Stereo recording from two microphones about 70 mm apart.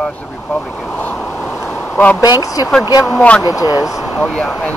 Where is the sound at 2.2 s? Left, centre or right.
Left.